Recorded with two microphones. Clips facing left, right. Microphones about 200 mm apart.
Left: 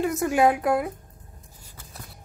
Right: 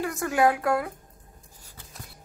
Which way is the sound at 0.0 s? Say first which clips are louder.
Left 3 dB; 20° left (ahead or behind).